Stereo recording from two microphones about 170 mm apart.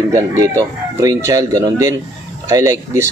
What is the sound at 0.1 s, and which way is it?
Speech, 20° right (ahead or behind).